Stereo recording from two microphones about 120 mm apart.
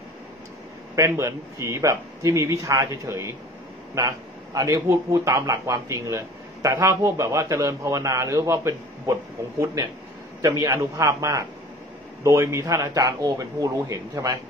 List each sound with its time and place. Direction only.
0.9 s a man's voice: 25° right (ahead or behind)
10.4 s a man's voice: 30° right (ahead or behind)